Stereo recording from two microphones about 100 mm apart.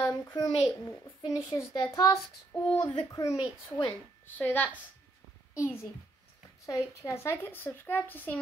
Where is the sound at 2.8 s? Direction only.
45° left (ahead or behind).